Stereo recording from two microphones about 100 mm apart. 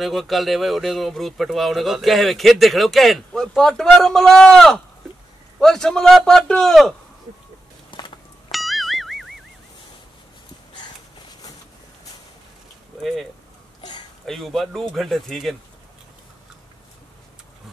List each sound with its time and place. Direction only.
0.0 s speech: centre (ahead or behind)
7.9 s a sound: 55° left (ahead or behind)
8.5 s music: centre (ahead or behind)
13.0 s speech: centre (ahead or behind)